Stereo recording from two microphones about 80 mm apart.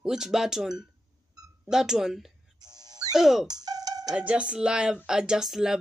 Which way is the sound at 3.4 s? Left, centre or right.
Right.